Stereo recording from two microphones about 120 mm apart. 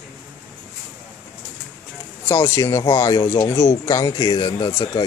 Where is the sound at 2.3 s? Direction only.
20° left (ahead or behind).